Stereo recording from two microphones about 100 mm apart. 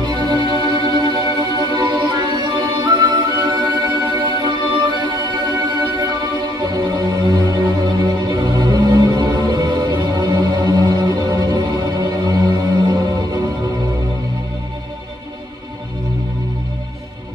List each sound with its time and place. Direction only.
0.0 s music: 45° right (ahead or behind)